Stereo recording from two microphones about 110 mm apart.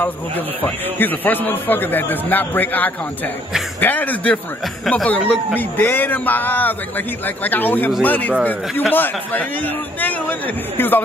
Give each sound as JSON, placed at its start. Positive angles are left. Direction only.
{"t": 0.7, "sound": "a man's voice", "side_deg": 15}
{"t": 10.8, "sound": "speech", "side_deg": 20}